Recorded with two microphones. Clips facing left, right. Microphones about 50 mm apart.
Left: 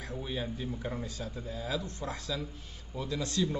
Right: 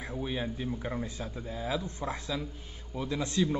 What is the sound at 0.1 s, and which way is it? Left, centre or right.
Speech, centre.